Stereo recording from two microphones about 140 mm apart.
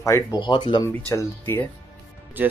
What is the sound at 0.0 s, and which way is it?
Speech, 25° left (ahead or behind).